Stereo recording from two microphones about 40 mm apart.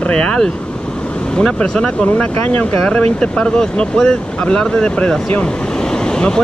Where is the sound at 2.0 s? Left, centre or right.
Left.